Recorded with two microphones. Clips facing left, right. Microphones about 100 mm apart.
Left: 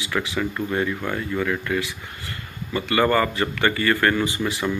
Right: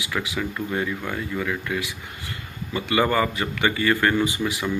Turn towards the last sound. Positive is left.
turn(degrees=-10)  # may be behind; listen again after turning